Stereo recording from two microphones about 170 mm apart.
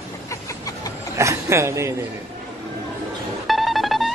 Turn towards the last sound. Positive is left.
turn(degrees=0)  # may be behind; listen again after turning